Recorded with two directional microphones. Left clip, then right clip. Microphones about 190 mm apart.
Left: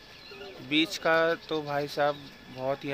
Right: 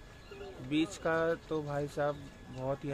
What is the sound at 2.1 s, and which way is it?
Speech, 20° left (ahead or behind).